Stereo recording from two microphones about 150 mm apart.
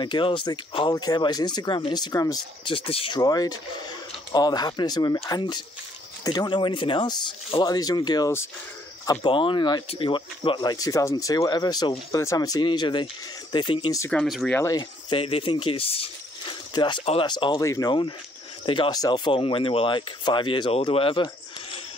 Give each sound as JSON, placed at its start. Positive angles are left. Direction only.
{"t": 0.0, "sound": "speech", "side_deg": 30}
{"t": 3.2, "sound": "speech", "side_deg": 25}
{"t": 14.1, "sound": "speech", "side_deg": 0}
{"t": 14.5, "sound": "speech", "side_deg": 20}
{"t": 17.0, "sound": "speech", "side_deg": 40}
{"t": 17.3, "sound": "speech", "side_deg": 30}